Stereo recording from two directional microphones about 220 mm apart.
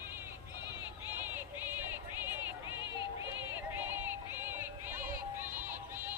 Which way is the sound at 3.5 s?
10° right (ahead or behind).